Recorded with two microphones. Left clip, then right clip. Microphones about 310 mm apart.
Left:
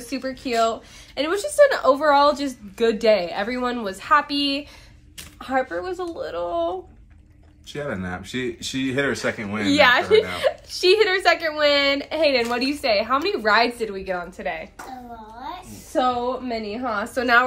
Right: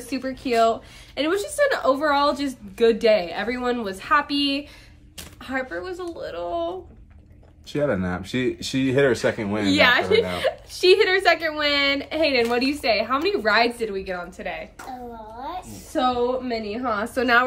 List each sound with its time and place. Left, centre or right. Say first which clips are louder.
0.0 s a woman's voice: even; centre
5.4 s speech: left 5 dB; centre
7.7 s speech: right 5 dB; right
9.7 s a woman's voice: left 2 dB; centre
15.9 s speech: even; centre
16.6 s a woman's voice: even; centre